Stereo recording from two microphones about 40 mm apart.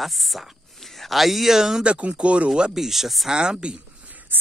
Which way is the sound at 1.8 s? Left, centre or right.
Right.